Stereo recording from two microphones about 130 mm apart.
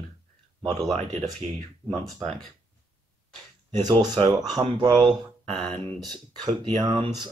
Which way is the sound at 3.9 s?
35° right (ahead or behind).